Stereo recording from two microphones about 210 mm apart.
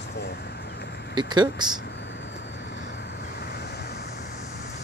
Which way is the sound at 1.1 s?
20° right (ahead or behind).